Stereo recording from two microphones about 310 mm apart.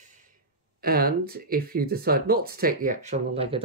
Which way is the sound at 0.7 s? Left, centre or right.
Right.